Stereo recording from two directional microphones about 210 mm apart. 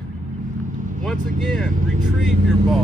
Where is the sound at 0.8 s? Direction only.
35° right (ahead or behind).